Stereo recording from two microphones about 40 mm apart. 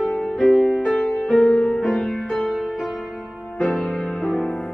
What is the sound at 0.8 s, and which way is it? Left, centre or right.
Music, centre.